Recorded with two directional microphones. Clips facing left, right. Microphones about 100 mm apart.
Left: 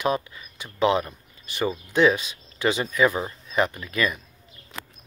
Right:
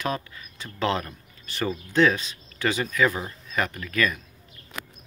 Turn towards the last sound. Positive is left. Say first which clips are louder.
# even
turn(degrees=20)  # may be behind; listen again after turning